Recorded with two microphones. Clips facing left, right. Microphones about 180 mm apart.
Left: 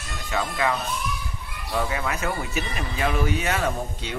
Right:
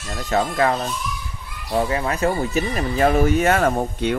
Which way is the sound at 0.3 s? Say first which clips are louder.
Right 6 dB; 40° right (ahead or behind).